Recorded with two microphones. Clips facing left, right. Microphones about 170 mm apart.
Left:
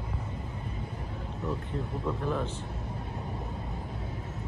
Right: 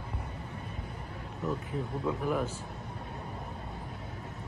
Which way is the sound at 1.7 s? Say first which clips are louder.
Even; 5° right (ahead or behind).